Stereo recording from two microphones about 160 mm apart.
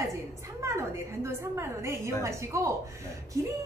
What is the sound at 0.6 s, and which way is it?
A woman's voice, 20° right (ahead or behind).